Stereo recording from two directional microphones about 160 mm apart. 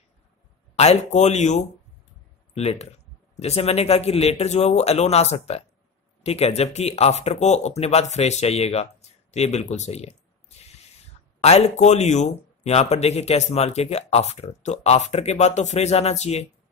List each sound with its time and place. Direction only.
0.7 s speech: 45° left (ahead or behind)
10.5 s spray: 40° left (ahead or behind)
11.4 s speech: 40° left (ahead or behind)